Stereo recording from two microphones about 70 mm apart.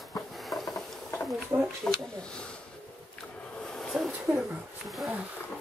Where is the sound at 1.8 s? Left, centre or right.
Centre.